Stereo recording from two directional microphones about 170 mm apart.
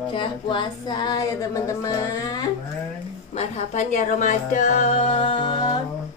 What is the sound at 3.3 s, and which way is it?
Speech, 45° left (ahead or behind).